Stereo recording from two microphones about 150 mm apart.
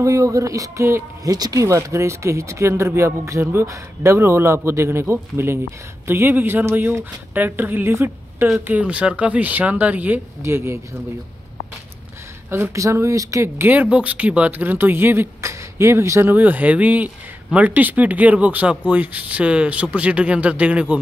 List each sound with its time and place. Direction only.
0.0 s speech: 20° right (ahead or behind)
12.4 s speech: 15° right (ahead or behind)